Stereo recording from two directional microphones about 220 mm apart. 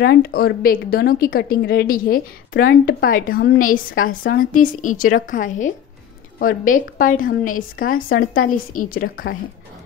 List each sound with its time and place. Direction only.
0.0 s a woman's voice: 45° left (ahead or behind)